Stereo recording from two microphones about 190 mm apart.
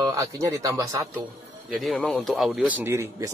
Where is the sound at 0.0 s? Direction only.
20° right (ahead or behind).